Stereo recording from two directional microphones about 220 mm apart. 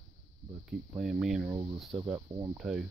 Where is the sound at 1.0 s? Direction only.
Centre (ahead or behind).